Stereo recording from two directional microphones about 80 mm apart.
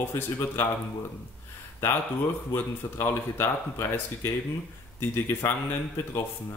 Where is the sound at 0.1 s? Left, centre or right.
Left.